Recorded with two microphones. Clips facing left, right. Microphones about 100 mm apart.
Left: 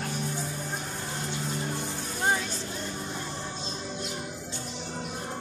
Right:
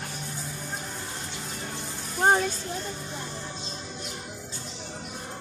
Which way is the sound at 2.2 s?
45° right (ahead or behind).